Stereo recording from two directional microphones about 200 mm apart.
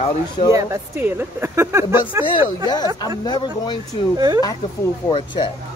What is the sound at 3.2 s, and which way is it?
Speech, 20° left (ahead or behind).